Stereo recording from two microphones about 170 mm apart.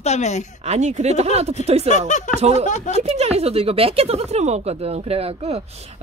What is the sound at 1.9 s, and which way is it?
Speech, 45° left (ahead or behind).